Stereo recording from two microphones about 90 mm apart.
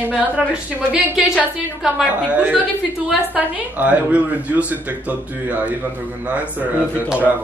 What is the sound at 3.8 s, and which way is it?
A woman's voice, 15° right (ahead or behind).